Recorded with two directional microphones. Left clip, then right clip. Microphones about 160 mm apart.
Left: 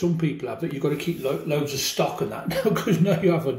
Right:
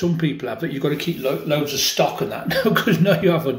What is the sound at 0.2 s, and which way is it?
Speech, 15° left (ahead or behind).